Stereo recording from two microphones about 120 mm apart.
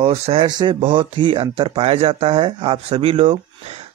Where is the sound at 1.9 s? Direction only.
55° right (ahead or behind).